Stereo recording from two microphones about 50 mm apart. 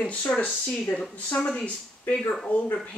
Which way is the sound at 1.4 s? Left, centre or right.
Centre.